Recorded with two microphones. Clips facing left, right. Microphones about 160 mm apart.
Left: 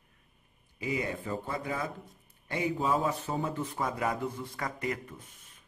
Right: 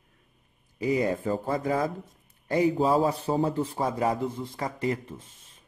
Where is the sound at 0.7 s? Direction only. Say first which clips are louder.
Right 8 dB; 40° right (ahead or behind).